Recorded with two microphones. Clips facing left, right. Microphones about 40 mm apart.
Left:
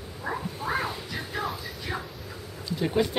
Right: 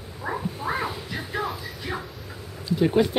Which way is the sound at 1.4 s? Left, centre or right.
Centre.